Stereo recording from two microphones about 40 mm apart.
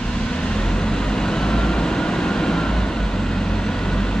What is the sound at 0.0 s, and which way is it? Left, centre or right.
Vehicle, left.